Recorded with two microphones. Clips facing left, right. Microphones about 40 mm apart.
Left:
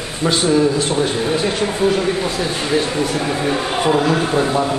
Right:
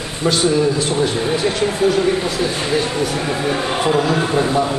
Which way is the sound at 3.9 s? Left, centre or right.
Centre.